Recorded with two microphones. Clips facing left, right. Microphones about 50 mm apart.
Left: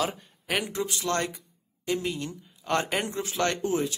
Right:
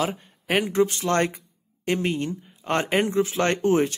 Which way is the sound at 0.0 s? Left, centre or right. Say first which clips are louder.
Right 3 dB; right.